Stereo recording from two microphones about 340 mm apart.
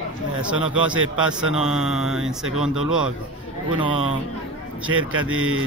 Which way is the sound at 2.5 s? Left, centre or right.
Right.